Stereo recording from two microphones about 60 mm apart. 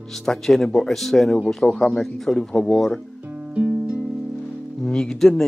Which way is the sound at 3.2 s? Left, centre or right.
Centre.